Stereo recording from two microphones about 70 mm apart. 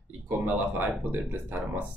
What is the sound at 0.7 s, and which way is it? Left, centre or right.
Speech, right.